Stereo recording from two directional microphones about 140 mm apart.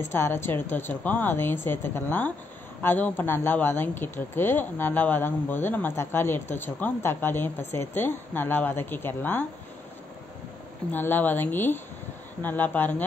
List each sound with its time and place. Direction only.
0.0 s speech: 15° left (ahead or behind)
10.9 s speech: 15° left (ahead or behind)